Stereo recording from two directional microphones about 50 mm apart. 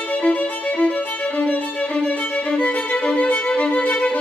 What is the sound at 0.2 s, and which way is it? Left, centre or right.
Violin, left.